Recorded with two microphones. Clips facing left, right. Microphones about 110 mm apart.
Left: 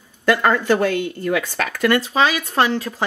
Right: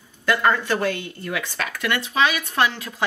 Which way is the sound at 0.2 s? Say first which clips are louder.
Left 3 dB; 45° left (ahead or behind).